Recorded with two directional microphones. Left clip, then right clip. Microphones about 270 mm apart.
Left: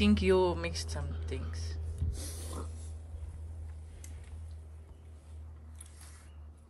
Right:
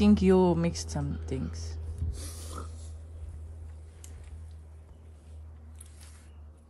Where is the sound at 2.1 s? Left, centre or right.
Centre.